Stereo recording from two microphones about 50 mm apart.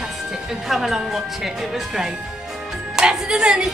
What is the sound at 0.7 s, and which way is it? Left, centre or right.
A woman's voice, centre.